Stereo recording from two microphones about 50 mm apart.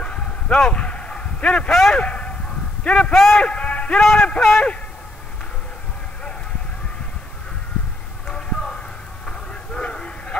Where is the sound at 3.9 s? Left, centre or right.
Centre.